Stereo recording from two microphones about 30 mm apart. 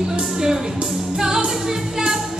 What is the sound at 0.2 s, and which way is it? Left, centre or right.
Music, centre.